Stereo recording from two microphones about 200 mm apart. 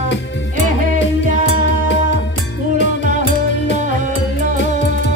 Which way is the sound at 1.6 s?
60° left (ahead or behind).